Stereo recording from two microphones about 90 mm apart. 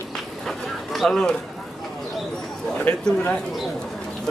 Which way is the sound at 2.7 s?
15° left (ahead or behind).